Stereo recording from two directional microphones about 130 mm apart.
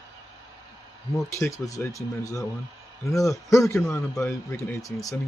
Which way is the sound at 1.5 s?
25° left (ahead or behind).